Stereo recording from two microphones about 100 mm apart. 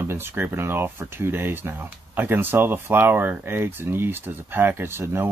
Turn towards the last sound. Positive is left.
turn(degrees=-25)  # may be behind; listen again after turning